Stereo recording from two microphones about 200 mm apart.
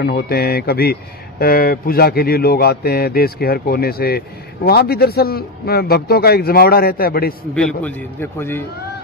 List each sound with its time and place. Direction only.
0.0 s a man's voice: 50° left (ahead or behind)
7.5 s a man's voice: 5° left (ahead or behind)